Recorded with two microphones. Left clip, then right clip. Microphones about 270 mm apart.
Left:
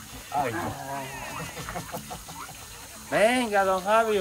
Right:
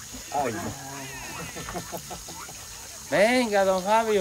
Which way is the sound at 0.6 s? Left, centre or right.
Centre.